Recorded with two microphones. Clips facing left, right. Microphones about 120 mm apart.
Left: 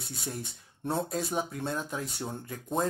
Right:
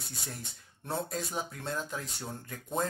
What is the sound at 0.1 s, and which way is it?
Speech, centre (ahead or behind).